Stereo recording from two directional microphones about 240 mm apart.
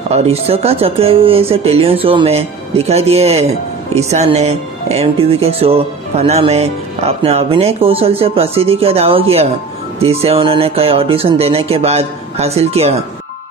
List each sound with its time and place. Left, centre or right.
0.1 s speech: right